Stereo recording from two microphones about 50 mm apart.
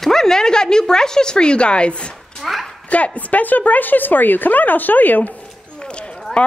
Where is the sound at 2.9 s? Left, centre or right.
Left.